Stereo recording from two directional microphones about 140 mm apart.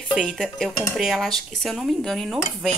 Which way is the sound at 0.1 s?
Centre (ahead or behind).